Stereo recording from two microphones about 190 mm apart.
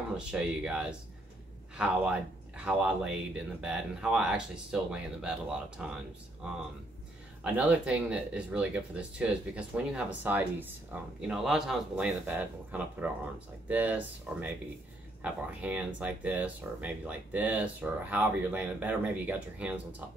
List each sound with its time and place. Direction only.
0.2 s speech: 5° right (ahead or behind)
7.4 s speech: 10° right (ahead or behind)